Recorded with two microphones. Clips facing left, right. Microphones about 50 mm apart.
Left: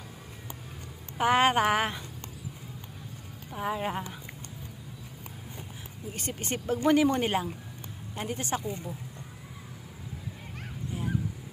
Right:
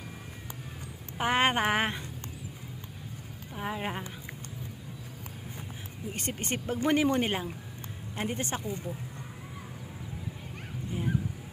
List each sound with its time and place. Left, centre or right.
1.1 s speech: centre
3.5 s speech: centre
6.1 s speech: right
6.6 s speech: centre
8.2 s speech: right
10.9 s goose: centre